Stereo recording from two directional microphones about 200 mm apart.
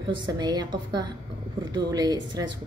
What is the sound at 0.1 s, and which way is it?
A woman's voice, 20° right (ahead or behind).